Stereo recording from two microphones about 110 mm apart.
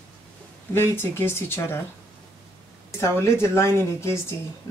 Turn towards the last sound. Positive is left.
turn(degrees=25)  # may be behind; listen again after turning